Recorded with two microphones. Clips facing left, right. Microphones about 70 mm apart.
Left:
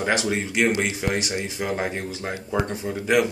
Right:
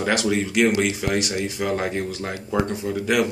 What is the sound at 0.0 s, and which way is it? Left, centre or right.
Speech, left.